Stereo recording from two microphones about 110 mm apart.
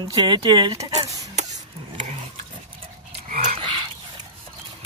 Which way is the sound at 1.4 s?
90° right.